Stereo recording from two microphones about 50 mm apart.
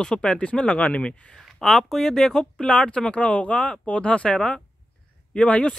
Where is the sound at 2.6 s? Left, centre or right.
Left.